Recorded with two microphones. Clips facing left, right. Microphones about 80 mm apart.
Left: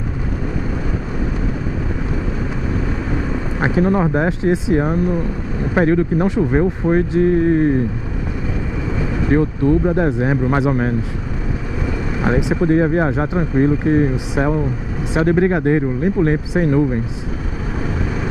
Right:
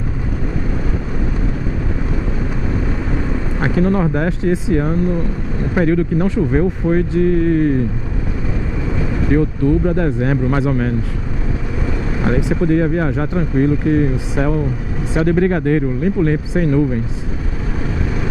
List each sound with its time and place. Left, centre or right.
3.5 s speech: centre
5.8 s speech: left
9.3 s speech: left
10.7 s speech: left
12.3 s speech: centre
12.6 s speech: left